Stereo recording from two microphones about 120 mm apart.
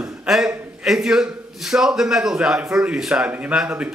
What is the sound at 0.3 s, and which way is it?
A man's voice, 5° right (ahead or behind).